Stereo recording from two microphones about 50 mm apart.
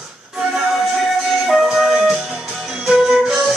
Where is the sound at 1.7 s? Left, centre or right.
Centre.